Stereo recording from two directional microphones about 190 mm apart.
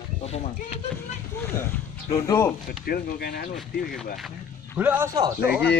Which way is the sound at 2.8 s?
55° left (ahead or behind).